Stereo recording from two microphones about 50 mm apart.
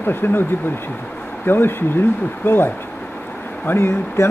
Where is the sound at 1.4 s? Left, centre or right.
Left.